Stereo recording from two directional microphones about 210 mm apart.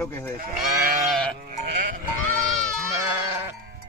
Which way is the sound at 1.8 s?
40° right (ahead or behind).